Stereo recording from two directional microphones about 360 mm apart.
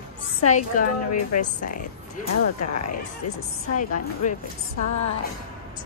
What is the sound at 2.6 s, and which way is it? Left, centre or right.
Speech, left.